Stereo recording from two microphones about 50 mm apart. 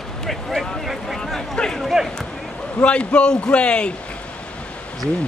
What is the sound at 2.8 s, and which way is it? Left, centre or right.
A man's voice, left.